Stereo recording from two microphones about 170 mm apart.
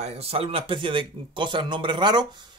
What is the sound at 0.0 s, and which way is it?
Speech, 35° right (ahead or behind).